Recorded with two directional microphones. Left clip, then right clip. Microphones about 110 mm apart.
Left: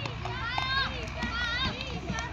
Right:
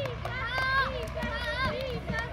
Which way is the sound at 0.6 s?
45° right (ahead or behind).